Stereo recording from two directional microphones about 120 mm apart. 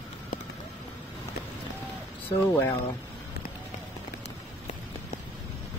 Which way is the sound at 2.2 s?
15° left (ahead or behind).